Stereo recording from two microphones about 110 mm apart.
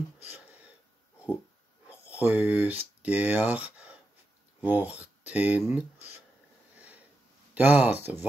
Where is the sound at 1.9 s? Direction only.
10° right (ahead or behind).